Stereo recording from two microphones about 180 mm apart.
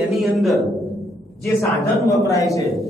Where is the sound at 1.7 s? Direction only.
15° left (ahead or behind).